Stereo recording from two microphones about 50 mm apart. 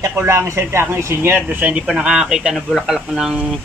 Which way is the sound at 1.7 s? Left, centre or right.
Centre.